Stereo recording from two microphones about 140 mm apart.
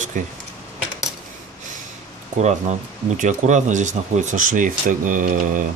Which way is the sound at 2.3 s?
55° right (ahead or behind).